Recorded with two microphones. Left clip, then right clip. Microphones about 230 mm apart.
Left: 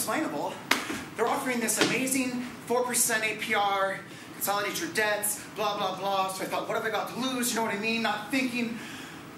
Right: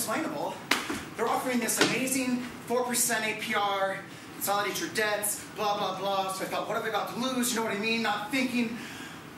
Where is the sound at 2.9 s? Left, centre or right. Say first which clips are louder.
Left 1 dB; left.